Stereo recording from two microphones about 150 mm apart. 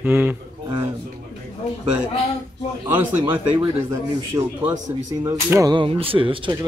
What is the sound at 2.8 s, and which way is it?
A man's voice, 15° right (ahead or behind).